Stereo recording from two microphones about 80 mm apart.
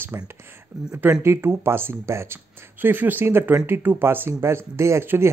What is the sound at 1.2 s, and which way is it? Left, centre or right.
Speech, right.